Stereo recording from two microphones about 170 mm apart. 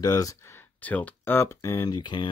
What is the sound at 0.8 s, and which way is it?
Speech, 10° left (ahead or behind).